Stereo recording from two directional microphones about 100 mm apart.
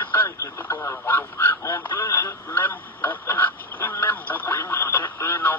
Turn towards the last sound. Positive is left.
turn(degrees=20)  # may be behind; listen again after turning